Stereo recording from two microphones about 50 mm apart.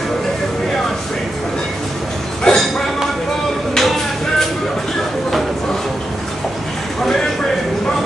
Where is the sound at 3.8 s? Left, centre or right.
Centre.